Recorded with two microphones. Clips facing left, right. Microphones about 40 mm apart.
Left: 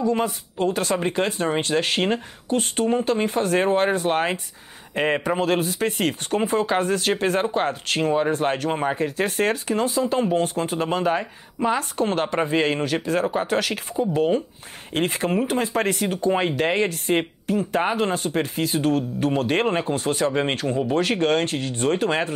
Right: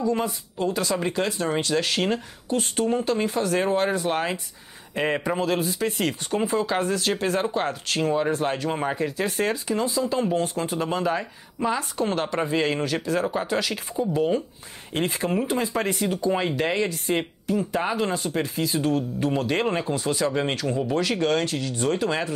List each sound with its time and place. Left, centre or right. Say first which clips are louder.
0.2 s speech: left 3 dB; left
5.4 s speech: left 2 dB; left
8.3 s speech: left 2 dB; left